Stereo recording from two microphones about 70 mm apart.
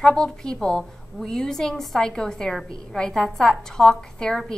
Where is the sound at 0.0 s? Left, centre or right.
Centre.